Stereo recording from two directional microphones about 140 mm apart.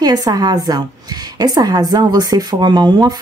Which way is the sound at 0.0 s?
30° right (ahead or behind).